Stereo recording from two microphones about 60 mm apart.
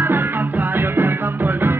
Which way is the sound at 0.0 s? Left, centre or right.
Right.